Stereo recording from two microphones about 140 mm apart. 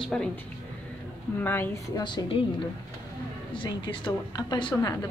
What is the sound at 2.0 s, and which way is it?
Speech, 35° left (ahead or behind).